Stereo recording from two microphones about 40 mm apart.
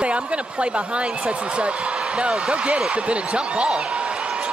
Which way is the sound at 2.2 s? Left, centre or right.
Right.